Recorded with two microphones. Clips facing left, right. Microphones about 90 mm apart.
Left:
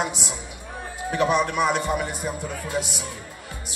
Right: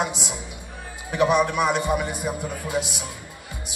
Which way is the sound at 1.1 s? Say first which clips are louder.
Right 2 dB; 15° right (ahead or behind).